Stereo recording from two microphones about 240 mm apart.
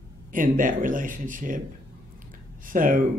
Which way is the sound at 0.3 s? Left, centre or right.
Right.